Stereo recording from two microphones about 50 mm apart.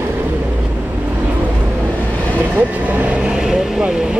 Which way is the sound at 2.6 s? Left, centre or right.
Right.